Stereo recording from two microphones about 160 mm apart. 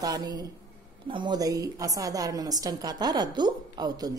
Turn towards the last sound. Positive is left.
turn(degrees=-25)  # may be behind; listen again after turning